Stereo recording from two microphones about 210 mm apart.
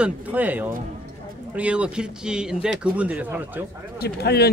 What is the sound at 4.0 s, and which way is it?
Speech, 50° left (ahead or behind).